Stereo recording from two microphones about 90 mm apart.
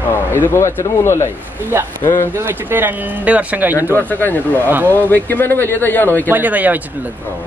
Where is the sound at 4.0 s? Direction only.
20° left (ahead or behind).